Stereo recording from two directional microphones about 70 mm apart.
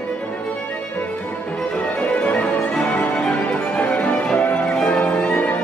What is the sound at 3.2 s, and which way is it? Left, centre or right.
Music, centre.